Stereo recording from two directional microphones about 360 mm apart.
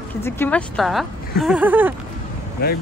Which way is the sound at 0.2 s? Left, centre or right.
Centre.